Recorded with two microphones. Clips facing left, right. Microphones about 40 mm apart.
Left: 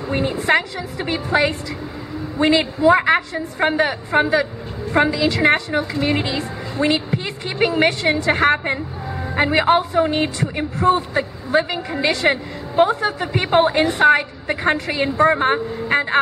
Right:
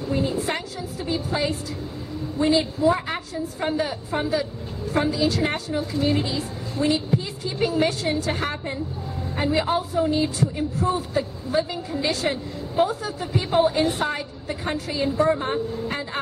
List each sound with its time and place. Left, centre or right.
0.1 s a woman's voice: left